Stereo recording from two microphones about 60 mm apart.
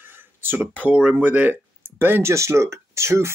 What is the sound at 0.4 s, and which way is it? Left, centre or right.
Speech, right.